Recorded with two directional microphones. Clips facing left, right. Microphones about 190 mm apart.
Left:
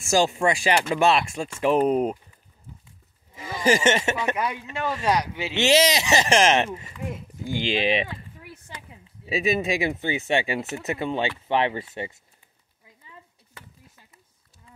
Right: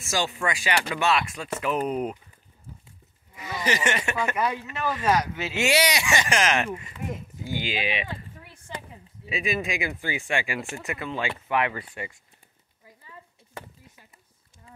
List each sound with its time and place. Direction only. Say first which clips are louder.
0.3 s speech: left 5 dB; 30° left (ahead or behind)
1.9 s speech: left 6 dB; 45° left (ahead or behind)
3.3 s speech: left 6 dB; 30° left (ahead or behind)
5.0 s speech: right 1 dB; 15° left (ahead or behind)
7.4 s speech: left 5 dB; 5° right (ahead or behind)
7.8 s speech: left 7 dB; 40° left (ahead or behind)
9.7 s speech: left 5 dB; 25° left (ahead or behind)